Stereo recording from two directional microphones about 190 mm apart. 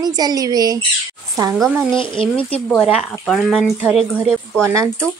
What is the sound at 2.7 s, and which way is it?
Speech, 5° right (ahead or behind).